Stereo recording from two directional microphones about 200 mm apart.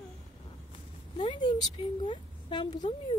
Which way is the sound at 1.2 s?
25° left (ahead or behind).